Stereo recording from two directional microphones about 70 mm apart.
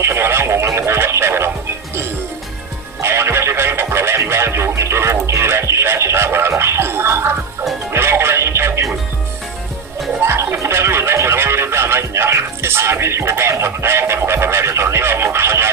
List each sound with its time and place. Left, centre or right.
0.0 s radio: right
3.0 s music: right
5.2 s speech: right
10.2 s speech: right